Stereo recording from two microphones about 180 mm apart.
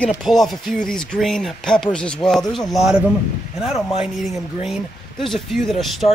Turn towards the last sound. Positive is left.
turn(degrees=0)  # may be behind; listen again after turning